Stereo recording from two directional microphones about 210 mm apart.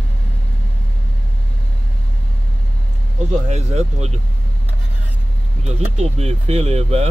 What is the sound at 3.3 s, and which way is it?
Speech, 30° right (ahead or behind).